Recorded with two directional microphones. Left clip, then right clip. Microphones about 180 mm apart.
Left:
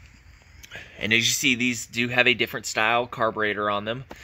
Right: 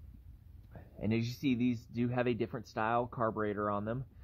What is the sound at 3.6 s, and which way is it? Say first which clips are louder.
Speech: left 10 dB; 10° left (ahead or behind).